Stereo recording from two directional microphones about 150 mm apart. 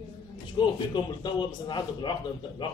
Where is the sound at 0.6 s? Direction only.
30° left (ahead or behind).